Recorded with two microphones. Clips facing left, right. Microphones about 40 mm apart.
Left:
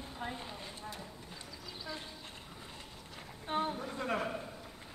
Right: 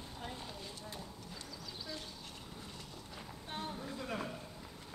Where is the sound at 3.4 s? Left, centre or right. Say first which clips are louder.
Left 9 dB; left.